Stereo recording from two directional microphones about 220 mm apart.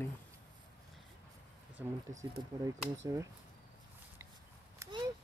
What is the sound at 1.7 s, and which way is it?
Speech, 15° right (ahead or behind).